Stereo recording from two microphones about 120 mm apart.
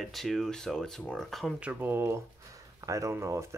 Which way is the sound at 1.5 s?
15° right (ahead or behind).